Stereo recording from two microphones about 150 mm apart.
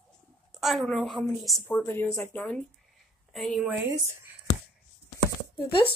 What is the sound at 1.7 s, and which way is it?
Speech, 15° left (ahead or behind).